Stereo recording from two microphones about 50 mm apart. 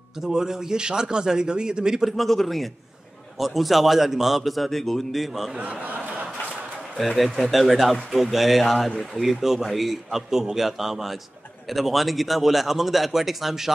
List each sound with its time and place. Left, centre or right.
0.2 s speech: centre
2.0 s a man's voice: centre
5.6 s a sound: right
7.0 s a man's voice: centre